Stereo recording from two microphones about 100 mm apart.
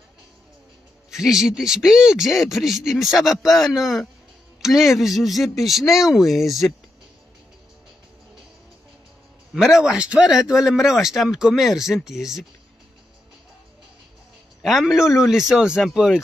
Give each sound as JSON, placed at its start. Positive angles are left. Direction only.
{"t": 1.1, "sound": "speech", "side_deg": -5}
{"t": 9.5, "sound": "speech", "side_deg": -5}
{"t": 14.6, "sound": "speech", "side_deg": 0}